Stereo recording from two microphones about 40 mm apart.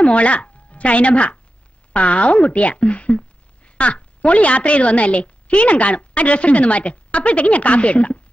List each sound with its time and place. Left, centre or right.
0.0 s a woman's voice: left